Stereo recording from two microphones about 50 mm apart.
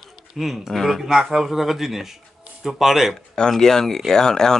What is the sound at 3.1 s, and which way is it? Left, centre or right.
Speech, centre.